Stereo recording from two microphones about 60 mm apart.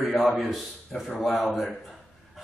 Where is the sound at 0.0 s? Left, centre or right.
Centre.